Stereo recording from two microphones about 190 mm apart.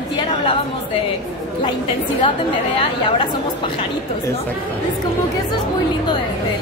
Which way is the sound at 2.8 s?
25° left (ahead or behind).